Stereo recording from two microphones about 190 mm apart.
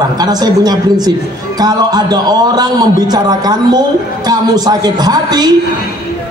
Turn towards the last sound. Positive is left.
turn(degrees=-20)  # may be behind; listen again after turning